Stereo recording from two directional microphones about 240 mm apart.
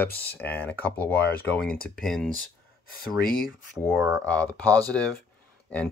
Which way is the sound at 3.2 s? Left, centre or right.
Left.